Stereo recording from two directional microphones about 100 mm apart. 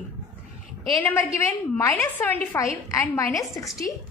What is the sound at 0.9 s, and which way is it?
A woman's voice, 20° left (ahead or behind).